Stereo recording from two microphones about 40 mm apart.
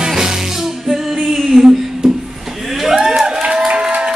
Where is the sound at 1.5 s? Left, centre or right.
Right.